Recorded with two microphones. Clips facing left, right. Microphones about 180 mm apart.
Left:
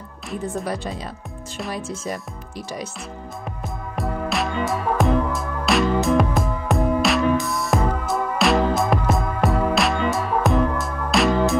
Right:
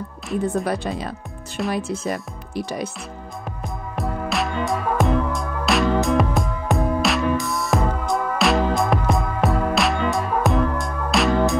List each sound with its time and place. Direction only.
0.7 s speech: 60° right (ahead or behind)
3.6 s music: centre (ahead or behind)